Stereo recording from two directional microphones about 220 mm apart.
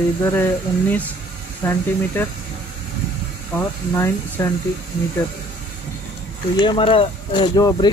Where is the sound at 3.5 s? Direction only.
10° left (ahead or behind).